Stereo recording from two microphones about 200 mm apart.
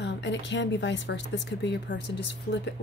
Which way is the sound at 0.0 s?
60° left (ahead or behind).